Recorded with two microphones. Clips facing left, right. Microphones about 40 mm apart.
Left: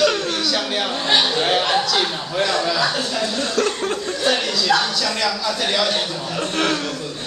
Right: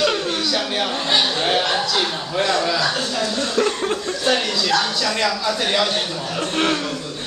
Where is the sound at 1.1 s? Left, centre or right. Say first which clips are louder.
Left 1 dB; centre.